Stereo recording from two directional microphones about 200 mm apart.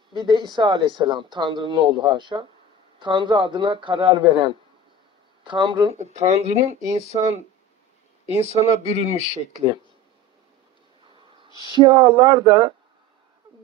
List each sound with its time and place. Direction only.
0.1 s speech: 20° right (ahead or behind)
5.9 s speech: 35° right (ahead or behind)
11.6 s speech: 25° right (ahead or behind)